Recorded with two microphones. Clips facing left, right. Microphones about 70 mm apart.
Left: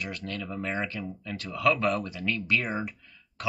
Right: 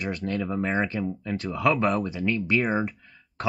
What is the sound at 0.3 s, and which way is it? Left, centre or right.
Speech, right.